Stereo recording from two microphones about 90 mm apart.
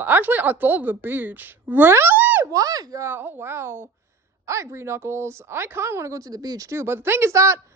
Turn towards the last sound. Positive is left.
turn(degrees=-30)  # may be behind; listen again after turning